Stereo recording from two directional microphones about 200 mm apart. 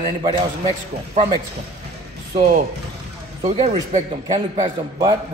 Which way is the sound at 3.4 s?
30° right (ahead or behind).